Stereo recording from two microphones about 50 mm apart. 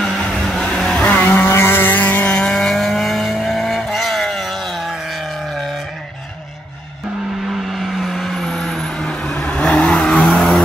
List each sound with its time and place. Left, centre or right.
0.0 s vehicle: centre
0.9 s vehicle: left
1.6 s vehicle: left
2.4 s vehicle: centre
7.5 s vehicle: centre
10.2 s vehicle: centre